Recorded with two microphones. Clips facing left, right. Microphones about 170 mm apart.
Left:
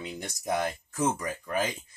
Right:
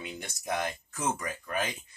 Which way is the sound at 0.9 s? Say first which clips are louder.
Left 5 dB; 35° left (ahead or behind).